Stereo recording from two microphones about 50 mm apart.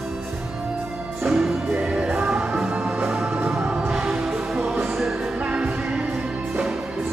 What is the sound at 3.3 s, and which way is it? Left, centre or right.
Music, centre.